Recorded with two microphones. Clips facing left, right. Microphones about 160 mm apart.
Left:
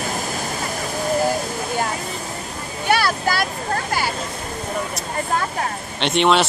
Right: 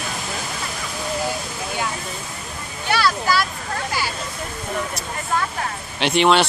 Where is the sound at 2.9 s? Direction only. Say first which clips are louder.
Even; 55° left (ahead or behind).